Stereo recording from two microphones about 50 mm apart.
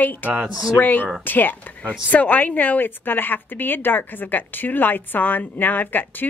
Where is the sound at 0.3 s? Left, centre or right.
Centre.